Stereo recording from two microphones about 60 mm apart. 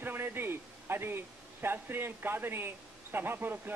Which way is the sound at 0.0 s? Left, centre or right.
Right.